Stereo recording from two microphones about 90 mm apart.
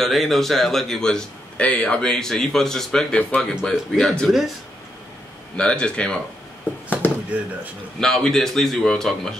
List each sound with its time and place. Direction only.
0.0 s a man's voice: centre (ahead or behind)
5.6 s speech: 10° left (ahead or behind)
7.0 s a sound: 25° left (ahead or behind)
8.0 s a man's voice: 5° left (ahead or behind)